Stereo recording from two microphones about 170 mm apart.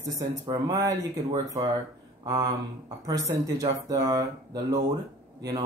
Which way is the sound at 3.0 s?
20° right (ahead or behind).